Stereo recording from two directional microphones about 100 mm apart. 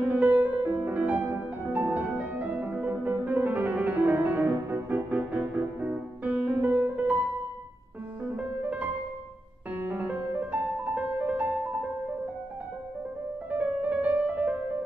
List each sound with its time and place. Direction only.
0.1 s music: 15° right (ahead or behind)
8.4 s music: 15° right (ahead or behind)
13.5 s music: 15° right (ahead or behind)